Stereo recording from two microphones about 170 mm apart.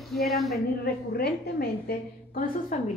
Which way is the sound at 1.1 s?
65° left (ahead or behind).